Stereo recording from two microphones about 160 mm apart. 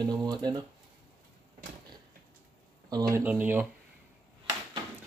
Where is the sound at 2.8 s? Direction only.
25° right (ahead or behind).